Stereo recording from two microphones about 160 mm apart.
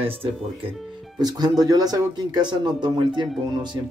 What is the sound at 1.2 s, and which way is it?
Speech, 25° right (ahead or behind).